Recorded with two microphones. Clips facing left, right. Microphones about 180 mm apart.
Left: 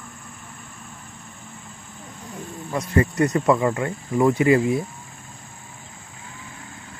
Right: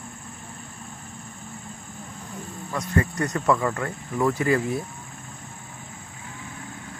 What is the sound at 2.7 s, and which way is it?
Speech, 20° left (ahead or behind).